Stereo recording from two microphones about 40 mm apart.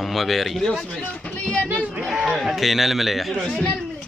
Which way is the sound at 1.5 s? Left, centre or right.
Left.